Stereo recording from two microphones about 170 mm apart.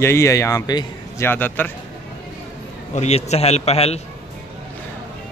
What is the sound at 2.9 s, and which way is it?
A man's voice, 40° left (ahead or behind).